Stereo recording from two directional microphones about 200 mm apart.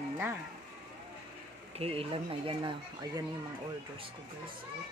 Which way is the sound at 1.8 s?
30° right (ahead or behind).